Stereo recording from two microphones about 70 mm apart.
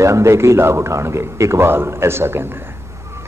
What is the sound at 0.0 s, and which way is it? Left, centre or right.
A man's voice, right.